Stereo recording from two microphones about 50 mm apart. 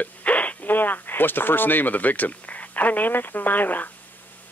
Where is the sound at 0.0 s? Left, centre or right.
Left.